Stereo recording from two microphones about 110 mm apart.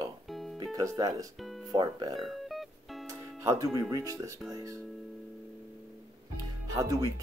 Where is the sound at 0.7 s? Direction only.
35° right (ahead or behind).